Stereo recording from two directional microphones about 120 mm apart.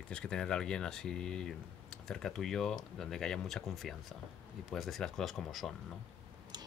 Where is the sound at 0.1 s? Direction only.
5° left (ahead or behind).